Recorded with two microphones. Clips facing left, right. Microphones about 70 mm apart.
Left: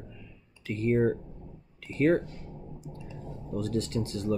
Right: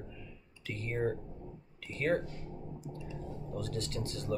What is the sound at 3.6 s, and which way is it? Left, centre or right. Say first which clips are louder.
Speech: left 9 dB; left.